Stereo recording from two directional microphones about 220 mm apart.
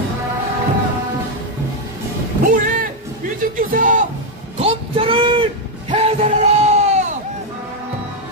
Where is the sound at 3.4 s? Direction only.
40° right (ahead or behind).